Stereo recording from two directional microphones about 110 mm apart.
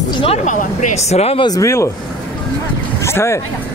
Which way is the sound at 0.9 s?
75° left (ahead or behind).